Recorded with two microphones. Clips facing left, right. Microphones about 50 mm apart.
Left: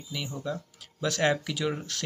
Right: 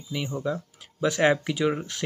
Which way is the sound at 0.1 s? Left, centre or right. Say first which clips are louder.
Right 5 dB; right.